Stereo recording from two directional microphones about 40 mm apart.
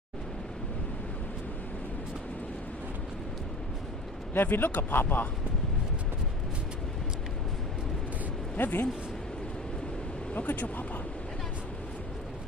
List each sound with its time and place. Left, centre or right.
4.3 s speech: left
8.5 s speech: left
10.3 s speech: left